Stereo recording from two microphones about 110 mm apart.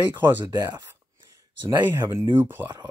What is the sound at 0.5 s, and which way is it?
Speech, 35° right (ahead or behind).